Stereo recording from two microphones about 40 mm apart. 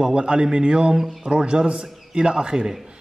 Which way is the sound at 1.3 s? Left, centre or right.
Right.